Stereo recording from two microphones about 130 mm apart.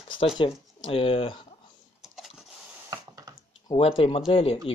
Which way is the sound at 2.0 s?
Centre (ahead or behind).